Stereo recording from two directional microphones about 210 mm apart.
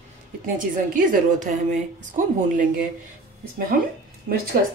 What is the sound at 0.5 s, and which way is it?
Speech, 40° right (ahead or behind).